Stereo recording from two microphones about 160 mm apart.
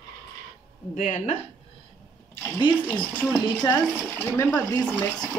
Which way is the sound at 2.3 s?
15° left (ahead or behind).